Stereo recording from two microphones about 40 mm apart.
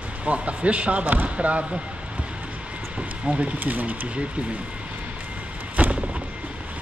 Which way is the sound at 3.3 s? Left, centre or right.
Right.